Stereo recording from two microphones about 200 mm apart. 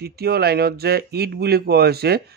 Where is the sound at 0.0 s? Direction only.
50° right (ahead or behind).